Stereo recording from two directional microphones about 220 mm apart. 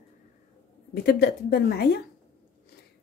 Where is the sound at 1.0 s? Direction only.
45° left (ahead or behind).